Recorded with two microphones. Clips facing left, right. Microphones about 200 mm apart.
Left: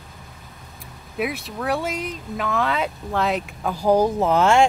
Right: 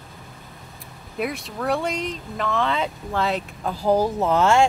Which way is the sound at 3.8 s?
15° left (ahead or behind).